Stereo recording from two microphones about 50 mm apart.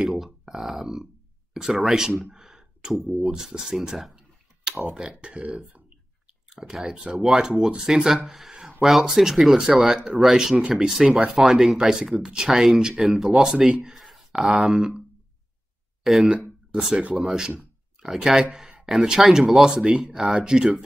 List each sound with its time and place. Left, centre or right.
0.0 s speech: centre
2.3 s a sound: centre
3.3 s speech: centre
5.2 s speech: right
6.5 s speech: centre
8.3 s a sound: centre
8.8 s speech: centre
16.0 s speech: centre
17.1 s speech: centre